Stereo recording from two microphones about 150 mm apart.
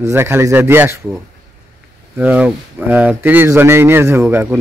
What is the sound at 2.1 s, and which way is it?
Speech, 10° right (ahead or behind).